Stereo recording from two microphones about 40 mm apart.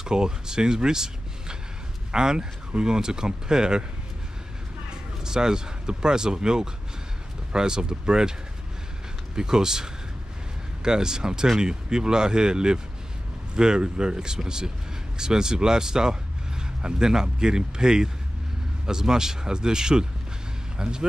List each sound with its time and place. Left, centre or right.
0.0 s speech: centre
4.8 s speech: centre